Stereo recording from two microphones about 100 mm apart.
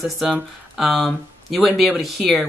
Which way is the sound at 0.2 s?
Centre (ahead or behind).